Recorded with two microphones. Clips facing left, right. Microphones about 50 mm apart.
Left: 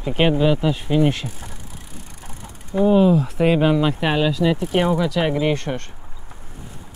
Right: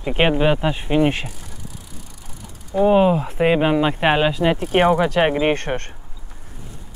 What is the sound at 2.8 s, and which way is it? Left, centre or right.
Speech, right.